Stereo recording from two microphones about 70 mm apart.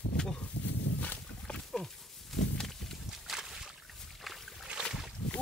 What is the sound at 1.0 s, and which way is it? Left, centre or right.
Pig, centre.